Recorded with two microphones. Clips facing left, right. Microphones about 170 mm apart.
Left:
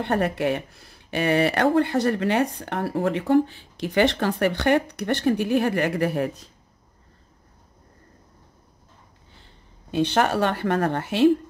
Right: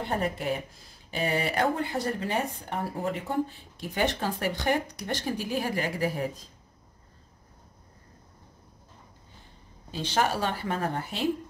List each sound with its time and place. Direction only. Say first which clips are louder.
0.0 s speech: left 7 dB; 75° left (ahead or behind)
9.4 s speech: even; 60° left (ahead or behind)